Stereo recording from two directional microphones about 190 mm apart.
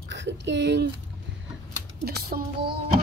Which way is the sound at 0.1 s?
65° right (ahead or behind).